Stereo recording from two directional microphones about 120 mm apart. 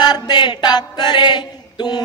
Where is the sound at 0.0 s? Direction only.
35° left (ahead or behind).